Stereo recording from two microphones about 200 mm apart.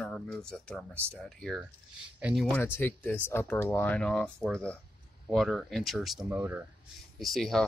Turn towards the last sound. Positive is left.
turn(degrees=0)  # may be behind; listen again after turning